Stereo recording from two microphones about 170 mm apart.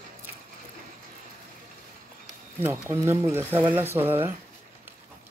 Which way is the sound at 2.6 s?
15° right (ahead or behind).